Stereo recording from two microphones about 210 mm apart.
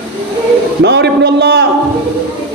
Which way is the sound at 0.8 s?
55° right (ahead or behind).